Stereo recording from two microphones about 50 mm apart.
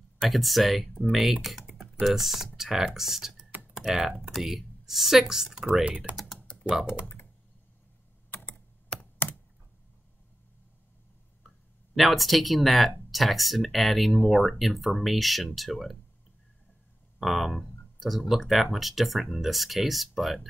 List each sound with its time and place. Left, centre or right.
0.2 s speech: centre
1.7 s computer keyboard: centre
2.0 s a woman's voice: centre
5.9 s speech: right
6.1 s typing: centre
6.6 s speech: centre
8.3 s computer keyboard: left
11.4 s speech: centre
17.2 s speech: centre